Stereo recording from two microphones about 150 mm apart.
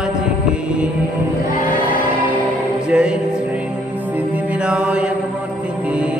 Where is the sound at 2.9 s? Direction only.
5° right (ahead or behind).